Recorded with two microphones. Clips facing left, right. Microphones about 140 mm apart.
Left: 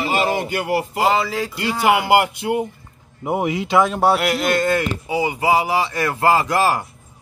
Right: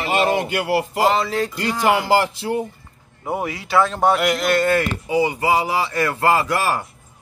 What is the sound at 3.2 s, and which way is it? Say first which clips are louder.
Speech: left 4 dB; 20° left (ahead or behind).